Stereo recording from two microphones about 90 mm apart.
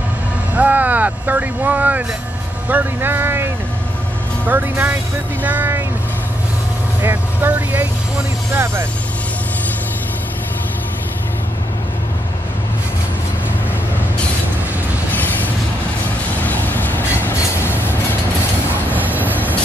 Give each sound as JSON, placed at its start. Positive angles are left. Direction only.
{"t": 0.6, "sound": "speech", "side_deg": -20}
{"t": 7.0, "sound": "speech", "side_deg": -20}
{"t": 15.1, "sound": "train", "side_deg": 20}
{"t": 16.4, "sound": "train", "side_deg": 20}
{"t": 18.9, "sound": "vehicle", "side_deg": -20}